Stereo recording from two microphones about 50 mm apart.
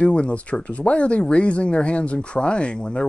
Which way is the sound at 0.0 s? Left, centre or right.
Left.